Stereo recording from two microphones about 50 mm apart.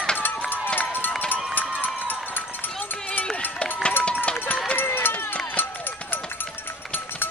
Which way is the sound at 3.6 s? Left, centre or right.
Centre.